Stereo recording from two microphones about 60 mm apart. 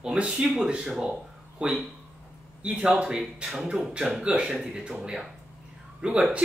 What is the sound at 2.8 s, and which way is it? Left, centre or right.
Speech, centre.